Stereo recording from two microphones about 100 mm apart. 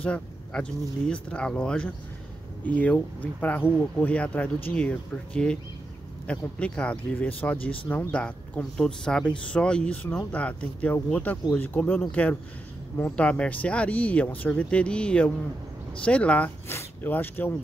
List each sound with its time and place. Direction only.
0.0 s speech: 10° left (ahead or behind)